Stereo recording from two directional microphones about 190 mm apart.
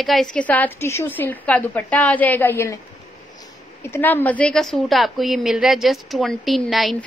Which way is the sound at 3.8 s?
10° left (ahead or behind).